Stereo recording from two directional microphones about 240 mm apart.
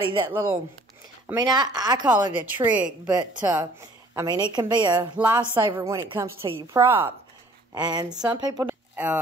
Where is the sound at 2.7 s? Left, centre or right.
Centre.